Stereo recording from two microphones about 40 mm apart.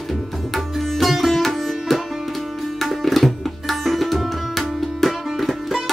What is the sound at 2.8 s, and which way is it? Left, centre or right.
Tabla, centre.